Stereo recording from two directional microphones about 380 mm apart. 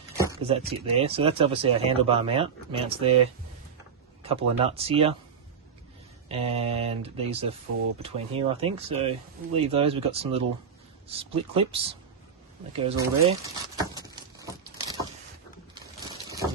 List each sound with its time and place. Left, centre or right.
0.2 s speech: centre
6.2 s speech: centre
7.7 s speech: right
8.0 s speech: centre
12.7 s a sound: centre
16.1 s a sound: centre